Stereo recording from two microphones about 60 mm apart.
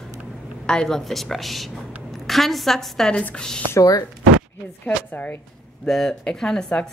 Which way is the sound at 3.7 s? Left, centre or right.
Left.